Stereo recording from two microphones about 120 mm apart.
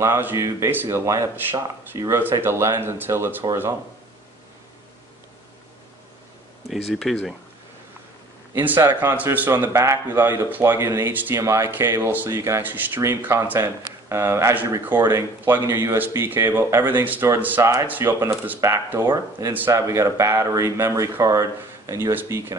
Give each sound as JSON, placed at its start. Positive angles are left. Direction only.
{"t": 0.0, "sound": "a man's voice", "side_deg": -20}
{"t": 6.9, "sound": "speech", "side_deg": 5}
{"t": 8.5, "sound": "a man's voice", "side_deg": -15}